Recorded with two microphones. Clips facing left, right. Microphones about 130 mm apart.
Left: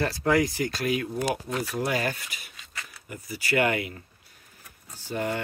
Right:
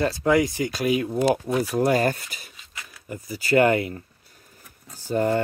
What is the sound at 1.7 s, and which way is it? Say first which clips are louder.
Speech: right 8 dB; 40° right (ahead or behind).